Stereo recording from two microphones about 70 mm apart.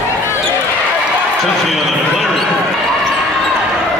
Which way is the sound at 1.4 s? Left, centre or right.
Centre.